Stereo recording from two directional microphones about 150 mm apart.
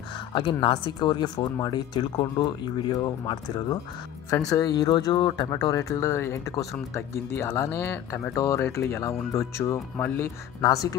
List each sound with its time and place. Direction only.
0.3 s speech: 35° left (ahead or behind)
4.5 s speech: 25° left (ahead or behind)